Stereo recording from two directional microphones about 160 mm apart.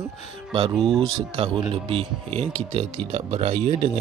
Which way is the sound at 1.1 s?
35° right (ahead or behind).